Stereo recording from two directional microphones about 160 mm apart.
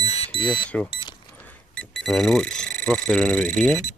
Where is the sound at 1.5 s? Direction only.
5° left (ahead or behind).